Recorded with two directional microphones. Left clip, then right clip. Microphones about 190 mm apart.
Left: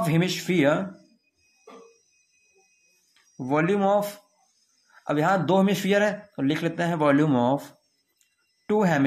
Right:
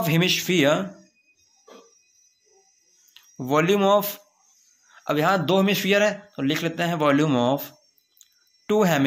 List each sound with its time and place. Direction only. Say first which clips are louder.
0.0 s a man's voice: right 4 dB; 10° right (ahead or behind)
3.3 s a man's voice: right 3 dB; 20° right (ahead or behind)
8.2 s a sound: right 10 dB; 10° right (ahead or behind)